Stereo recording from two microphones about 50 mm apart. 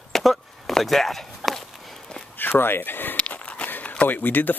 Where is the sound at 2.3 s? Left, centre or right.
Left.